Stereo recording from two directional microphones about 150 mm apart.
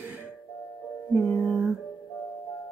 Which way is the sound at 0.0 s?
10° right (ahead or behind).